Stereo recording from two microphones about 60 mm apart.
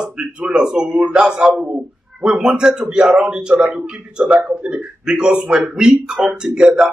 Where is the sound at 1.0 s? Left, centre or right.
Right.